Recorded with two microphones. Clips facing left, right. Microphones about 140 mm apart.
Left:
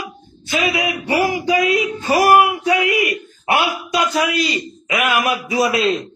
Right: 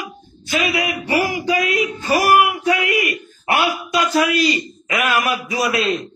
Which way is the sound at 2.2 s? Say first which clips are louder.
Left 3 dB; 25° left (ahead or behind).